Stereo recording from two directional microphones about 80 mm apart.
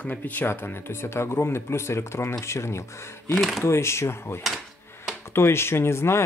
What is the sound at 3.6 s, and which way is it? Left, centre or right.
Speech, left.